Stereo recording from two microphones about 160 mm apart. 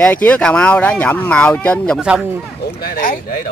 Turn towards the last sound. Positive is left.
turn(degrees=60)  # may be behind; listen again after turning